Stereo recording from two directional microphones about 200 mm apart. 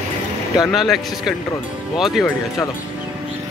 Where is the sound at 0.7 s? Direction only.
Centre (ahead or behind).